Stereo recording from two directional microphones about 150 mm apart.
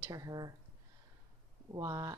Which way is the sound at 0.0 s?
20° right (ahead or behind).